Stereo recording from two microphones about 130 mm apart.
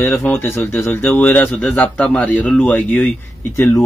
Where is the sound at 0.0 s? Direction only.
20° left (ahead or behind).